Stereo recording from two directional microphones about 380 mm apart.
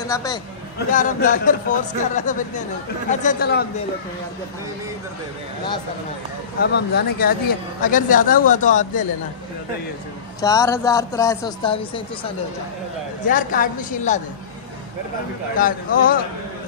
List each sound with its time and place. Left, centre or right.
0.0 s speech: centre
0.7 s speech: left
6.6 s speech: left
10.4 s a man's voice: centre
15.5 s speech: left